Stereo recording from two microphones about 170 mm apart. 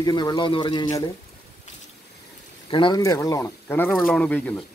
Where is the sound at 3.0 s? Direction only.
20° left (ahead or behind).